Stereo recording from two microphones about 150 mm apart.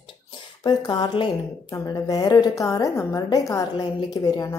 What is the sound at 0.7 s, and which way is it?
A woman's voice, 30° left (ahead or behind).